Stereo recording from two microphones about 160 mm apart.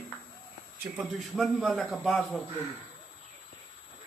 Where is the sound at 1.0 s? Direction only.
Centre (ahead or behind).